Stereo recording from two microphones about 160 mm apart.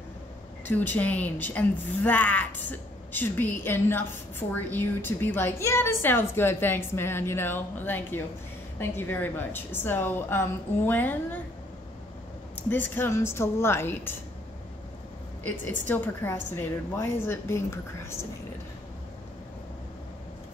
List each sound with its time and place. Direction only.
0.7 s a woman's voice: 10° left (ahead or behind)
12.6 s a woman's voice: 15° left (ahead or behind)
15.9 s a woman's voice: 15° left (ahead or behind)